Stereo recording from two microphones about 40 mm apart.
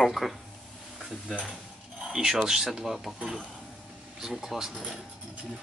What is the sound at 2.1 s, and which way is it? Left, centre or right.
Speech, centre.